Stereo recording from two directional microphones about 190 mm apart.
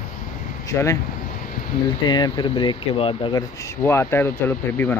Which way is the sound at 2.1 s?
25° left (ahead or behind).